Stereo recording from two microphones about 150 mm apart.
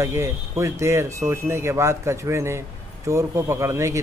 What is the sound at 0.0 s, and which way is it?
Speech, 20° right (ahead or behind).